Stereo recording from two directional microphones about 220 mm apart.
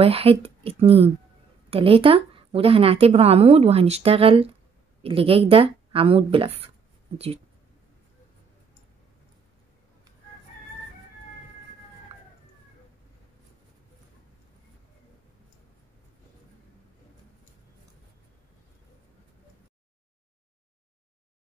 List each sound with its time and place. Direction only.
0.0 s a woman's voice: 25° right (ahead or behind)